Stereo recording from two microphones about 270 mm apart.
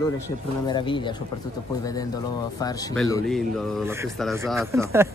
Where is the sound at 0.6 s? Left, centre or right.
Centre.